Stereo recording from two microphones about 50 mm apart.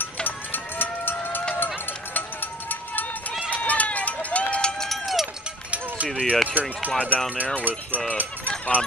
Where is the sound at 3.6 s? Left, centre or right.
Left.